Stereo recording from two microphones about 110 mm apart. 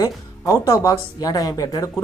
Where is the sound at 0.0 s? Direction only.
30° left (ahead or behind).